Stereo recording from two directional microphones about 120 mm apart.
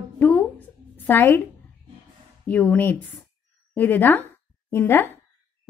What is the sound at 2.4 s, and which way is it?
A woman's voice, 15° left (ahead or behind).